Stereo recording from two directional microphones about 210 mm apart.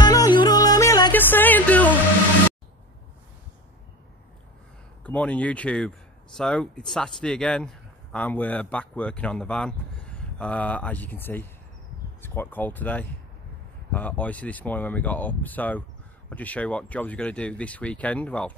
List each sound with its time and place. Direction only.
0.0 s music: 20° left (ahead or behind)
5.0 s speech: 5° left (ahead or behind)